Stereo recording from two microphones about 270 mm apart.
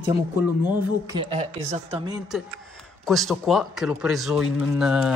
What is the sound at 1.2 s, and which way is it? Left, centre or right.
Speech, right.